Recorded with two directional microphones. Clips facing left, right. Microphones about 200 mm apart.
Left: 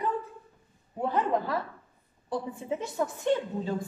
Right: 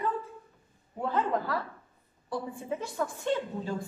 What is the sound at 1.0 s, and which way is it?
A woman's voice, 20° left (ahead or behind).